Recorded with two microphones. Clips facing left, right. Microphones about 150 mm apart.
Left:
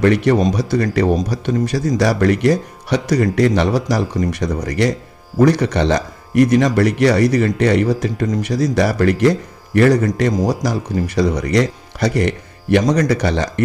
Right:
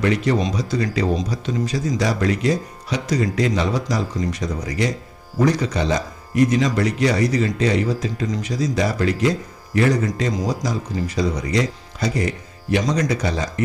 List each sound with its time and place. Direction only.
0.0 s speech: 60° left (ahead or behind)